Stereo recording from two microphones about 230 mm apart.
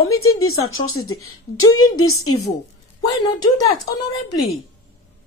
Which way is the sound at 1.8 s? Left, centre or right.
Left.